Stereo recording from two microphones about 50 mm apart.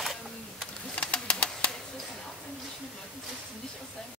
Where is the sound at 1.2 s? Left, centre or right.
Left.